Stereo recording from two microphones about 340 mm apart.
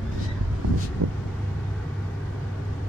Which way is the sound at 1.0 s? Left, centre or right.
Right.